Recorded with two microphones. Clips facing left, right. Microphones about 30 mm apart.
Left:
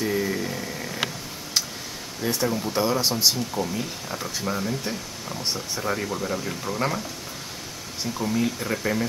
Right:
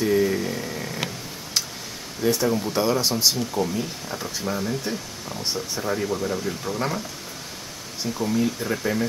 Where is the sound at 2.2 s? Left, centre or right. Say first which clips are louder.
Right 3 dB; centre.